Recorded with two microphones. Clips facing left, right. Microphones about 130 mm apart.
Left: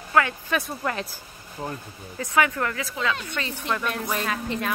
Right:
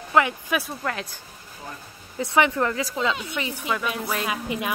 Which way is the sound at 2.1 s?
25° right (ahead or behind).